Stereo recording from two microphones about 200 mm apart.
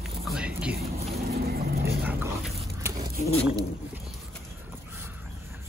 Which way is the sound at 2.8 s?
15° right (ahead or behind).